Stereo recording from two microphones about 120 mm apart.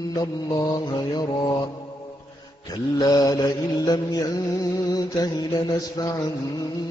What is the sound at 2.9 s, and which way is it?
Mantra, 30° left (ahead or behind).